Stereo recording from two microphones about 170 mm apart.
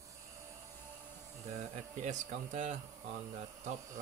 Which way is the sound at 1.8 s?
45° right (ahead or behind).